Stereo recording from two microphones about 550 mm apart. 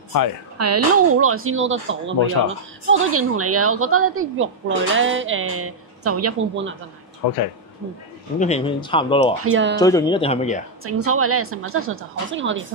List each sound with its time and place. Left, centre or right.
0.6 s a woman's voice: right
7.2 s speech: left
8.4 s speech: centre
9.4 s a woman's voice: right
9.8 s speech: centre
10.8 s a woman's voice: right